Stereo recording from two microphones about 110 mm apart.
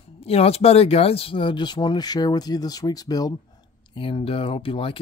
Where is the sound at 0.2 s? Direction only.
65° left (ahead or behind); by 3.3 s 35° left (ahead or behind).